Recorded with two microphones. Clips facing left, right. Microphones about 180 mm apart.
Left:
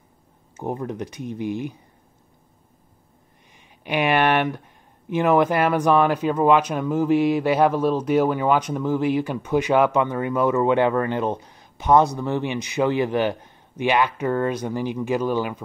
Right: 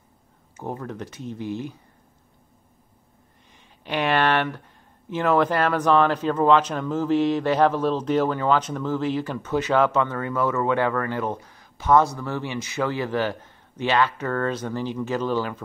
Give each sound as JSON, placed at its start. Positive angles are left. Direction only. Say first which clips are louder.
{"t": 0.6, "sound": "speech", "louder": "left 4 dB", "side_deg": 15}
{"t": 3.5, "sound": "speech", "louder": "left 3 dB", "side_deg": 15}